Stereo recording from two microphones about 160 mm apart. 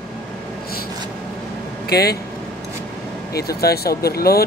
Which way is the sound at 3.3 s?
80° left.